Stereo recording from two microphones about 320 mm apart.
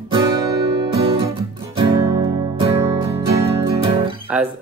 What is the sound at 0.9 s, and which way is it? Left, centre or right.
Music, centre.